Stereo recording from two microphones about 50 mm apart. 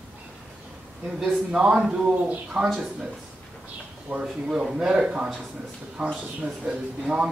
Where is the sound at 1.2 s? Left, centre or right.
Centre.